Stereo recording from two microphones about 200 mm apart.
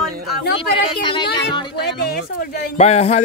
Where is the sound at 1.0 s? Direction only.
25° left (ahead or behind).